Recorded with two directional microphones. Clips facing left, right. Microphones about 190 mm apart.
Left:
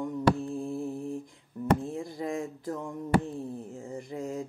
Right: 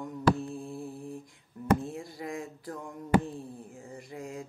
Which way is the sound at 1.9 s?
25° left (ahead or behind).